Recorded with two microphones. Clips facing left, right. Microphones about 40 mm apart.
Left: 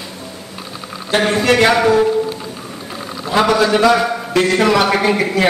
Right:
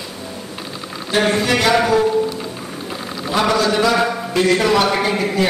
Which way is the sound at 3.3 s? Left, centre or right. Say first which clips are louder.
Left 3 dB; left.